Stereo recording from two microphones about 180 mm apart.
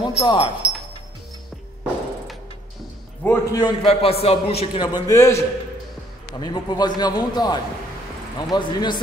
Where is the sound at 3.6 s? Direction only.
30° left (ahead or behind).